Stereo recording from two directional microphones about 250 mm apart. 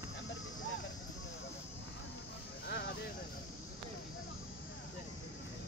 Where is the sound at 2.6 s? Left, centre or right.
Left.